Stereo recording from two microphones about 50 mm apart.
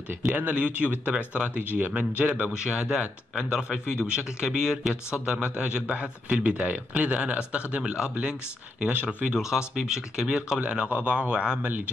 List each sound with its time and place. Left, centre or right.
0.4 s speech: right
1.6 s speech: right
1.9 s speech: right
9.3 s speech: centre
11.6 s speech: right